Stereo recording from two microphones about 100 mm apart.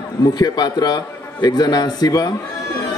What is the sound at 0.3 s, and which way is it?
A man's voice, 45° left (ahead or behind).